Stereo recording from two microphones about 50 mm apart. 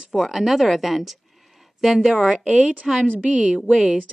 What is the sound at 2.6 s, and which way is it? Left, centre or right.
Speech, right.